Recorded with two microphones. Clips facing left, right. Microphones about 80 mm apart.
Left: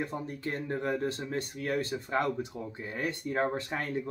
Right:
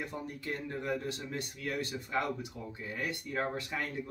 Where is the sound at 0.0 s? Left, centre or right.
Left.